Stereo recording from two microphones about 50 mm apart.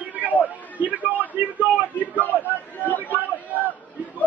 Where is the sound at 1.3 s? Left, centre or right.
Right.